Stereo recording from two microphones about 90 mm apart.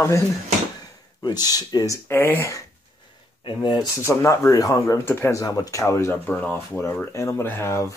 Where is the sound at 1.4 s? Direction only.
45° left (ahead or behind).